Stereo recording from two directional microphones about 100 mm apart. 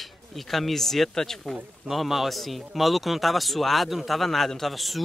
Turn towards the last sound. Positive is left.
turn(degrees=0)  # may be behind; listen again after turning